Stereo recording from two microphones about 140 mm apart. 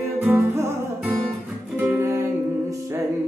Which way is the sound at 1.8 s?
15° right (ahead or behind).